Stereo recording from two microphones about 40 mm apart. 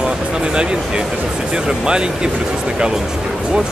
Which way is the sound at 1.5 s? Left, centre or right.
Right.